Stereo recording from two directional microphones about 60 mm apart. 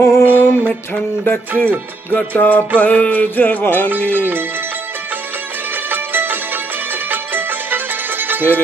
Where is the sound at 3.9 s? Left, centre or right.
Right.